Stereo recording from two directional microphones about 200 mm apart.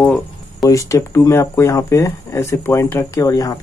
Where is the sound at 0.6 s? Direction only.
15° left (ahead or behind).